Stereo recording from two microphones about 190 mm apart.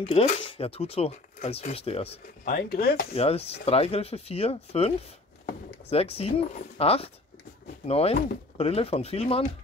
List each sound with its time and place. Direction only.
0.1 s speech: 35° left (ahead or behind)
2.4 s speech: 55° left (ahead or behind)
3.2 s speech: 30° left (ahead or behind)